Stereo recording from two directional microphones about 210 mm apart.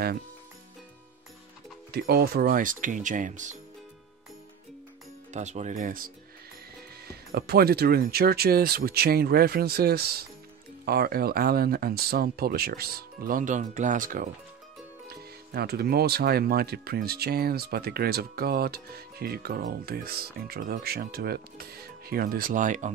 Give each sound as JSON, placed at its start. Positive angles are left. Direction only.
{"t": 1.9, "sound": "speech", "side_deg": -45}
{"t": 5.3, "sound": "speech", "side_deg": -35}
{"t": 7.3, "sound": "speech", "side_deg": -50}